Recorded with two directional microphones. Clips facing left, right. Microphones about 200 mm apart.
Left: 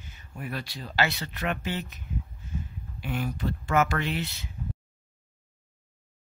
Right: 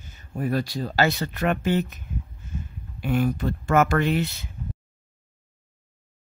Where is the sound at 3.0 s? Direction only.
50° right (ahead or behind).